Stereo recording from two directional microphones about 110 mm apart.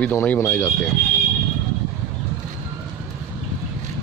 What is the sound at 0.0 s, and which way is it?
Speech, 15° left (ahead or behind).